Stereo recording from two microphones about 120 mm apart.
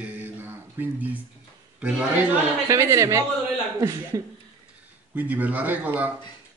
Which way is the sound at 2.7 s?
25° right (ahead or behind).